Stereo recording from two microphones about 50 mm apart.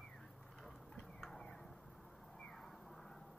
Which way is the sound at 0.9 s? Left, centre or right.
Centre.